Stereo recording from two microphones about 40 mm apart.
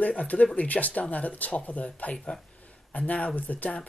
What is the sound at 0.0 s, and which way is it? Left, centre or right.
Speech, left.